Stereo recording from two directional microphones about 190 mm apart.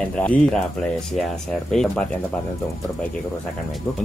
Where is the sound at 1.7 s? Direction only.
5° left (ahead or behind).